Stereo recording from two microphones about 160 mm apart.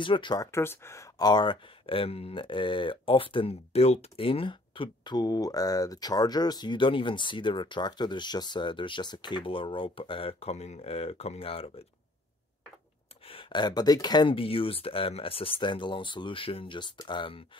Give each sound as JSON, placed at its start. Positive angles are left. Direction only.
{"t": 0.0, "sound": "speech", "side_deg": 30}
{"t": 13.2, "sound": "speech", "side_deg": 35}